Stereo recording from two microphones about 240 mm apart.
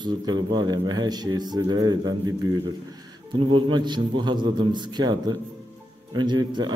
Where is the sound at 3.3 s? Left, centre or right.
Right.